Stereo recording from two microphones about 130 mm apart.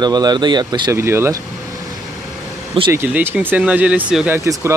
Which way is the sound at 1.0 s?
20° right (ahead or behind).